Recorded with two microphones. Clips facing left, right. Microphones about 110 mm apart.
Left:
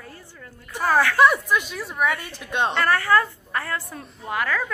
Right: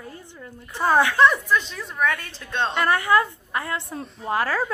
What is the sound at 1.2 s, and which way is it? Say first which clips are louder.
A woman's voice: even; 15° left (ahead or behind).